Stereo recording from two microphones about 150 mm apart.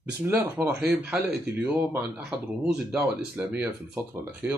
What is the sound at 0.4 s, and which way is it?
Speech, 15° right (ahead or behind).